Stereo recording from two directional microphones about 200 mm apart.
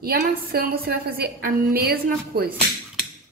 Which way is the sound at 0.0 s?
50° right (ahead or behind).